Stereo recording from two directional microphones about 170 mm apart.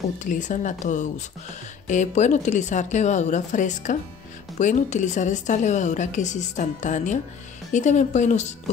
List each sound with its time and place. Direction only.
0.2 s a woman's voice: 45° left (ahead or behind)